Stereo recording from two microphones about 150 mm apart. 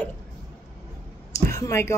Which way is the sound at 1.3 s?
20° left (ahead or behind).